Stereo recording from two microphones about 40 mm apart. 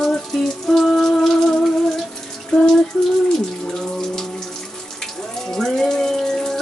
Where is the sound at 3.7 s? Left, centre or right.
Centre.